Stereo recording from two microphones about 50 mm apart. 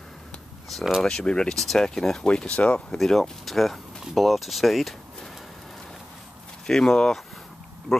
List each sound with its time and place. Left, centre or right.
0.7 s speech: centre
1.0 s speech: centre
3.0 s speech: centre
6.6 s speech: centre